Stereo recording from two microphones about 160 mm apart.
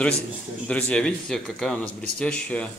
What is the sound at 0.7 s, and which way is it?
Speech, 5° left (ahead or behind).